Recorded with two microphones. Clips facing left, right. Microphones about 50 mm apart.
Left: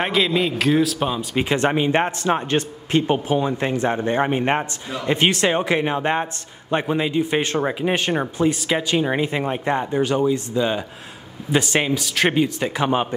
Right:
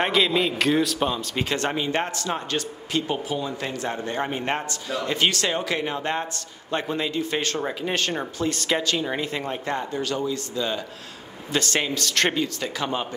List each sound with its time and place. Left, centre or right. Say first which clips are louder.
0.0 s speech: left 2 dB; centre
8.9 s speech: left 6 dB; left
12.4 s speech: left 6 dB; left